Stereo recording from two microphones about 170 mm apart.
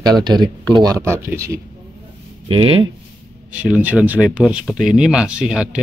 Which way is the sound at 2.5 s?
30° right (ahead or behind).